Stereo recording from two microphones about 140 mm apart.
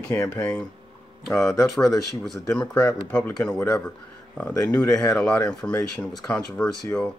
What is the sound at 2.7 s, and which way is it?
Speech, 20° left (ahead or behind).